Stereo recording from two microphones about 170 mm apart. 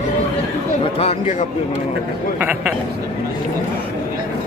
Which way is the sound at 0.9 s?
35° left (ahead or behind).